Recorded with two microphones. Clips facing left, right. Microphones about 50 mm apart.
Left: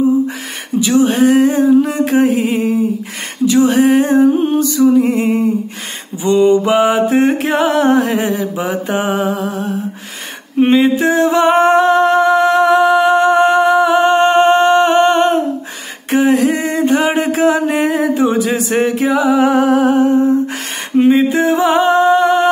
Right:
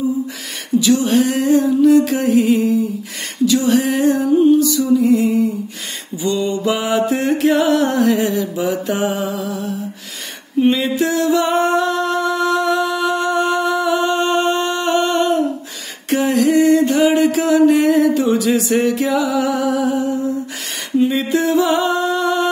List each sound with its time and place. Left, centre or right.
0.7 s a sound: left
3.4 s music: left
6.2 s music: left
10.8 s music: left
16.1 s a sound: left
21.1 s music: left